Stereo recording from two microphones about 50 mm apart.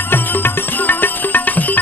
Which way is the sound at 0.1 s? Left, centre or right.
Left.